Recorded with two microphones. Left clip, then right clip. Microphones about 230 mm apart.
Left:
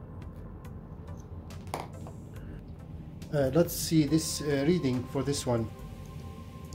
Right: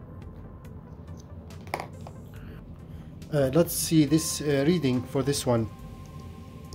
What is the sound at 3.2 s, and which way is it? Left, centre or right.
Speech, right.